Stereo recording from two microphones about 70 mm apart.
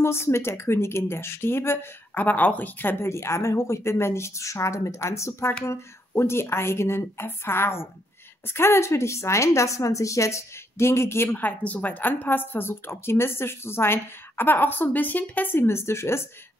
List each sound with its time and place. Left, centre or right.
0.0 s a woman's voice: left
3.1 s a woman's voice: left